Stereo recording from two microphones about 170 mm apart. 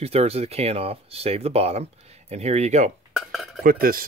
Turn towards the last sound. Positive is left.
turn(degrees=-55)  # may be behind; listen again after turning